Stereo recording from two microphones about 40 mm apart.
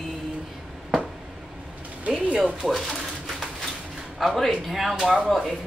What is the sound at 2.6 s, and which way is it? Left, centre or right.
Speech, right.